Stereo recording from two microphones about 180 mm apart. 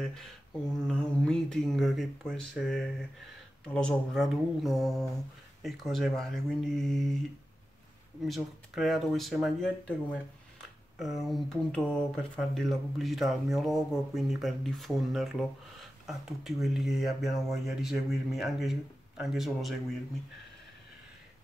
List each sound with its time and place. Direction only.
0.0 s speech: 5° left (ahead or behind)
8.2 s speech: centre (ahead or behind)
11.0 s speech: centre (ahead or behind)